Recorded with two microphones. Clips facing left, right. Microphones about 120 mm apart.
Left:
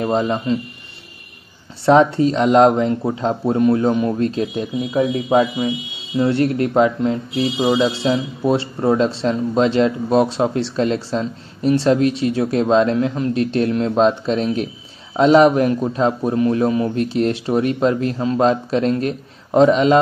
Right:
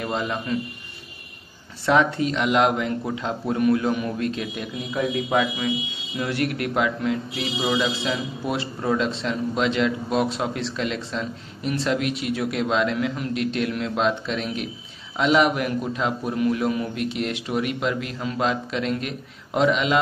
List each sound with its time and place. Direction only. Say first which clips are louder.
0.0 s speech: left 8 dB; 35° left (ahead or behind)
1.9 s speech: left 7 dB; 30° left (ahead or behind)